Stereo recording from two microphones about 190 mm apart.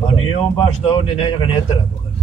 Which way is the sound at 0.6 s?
30° left (ahead or behind).